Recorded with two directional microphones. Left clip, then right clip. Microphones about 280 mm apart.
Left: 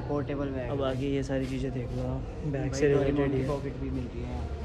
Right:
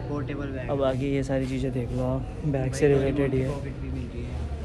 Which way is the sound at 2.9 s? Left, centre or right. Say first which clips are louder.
Right 2 dB; left.